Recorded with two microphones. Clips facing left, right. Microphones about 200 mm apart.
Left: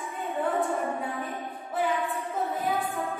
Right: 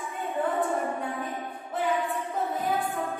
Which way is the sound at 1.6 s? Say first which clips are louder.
Even; centre (ahead or behind).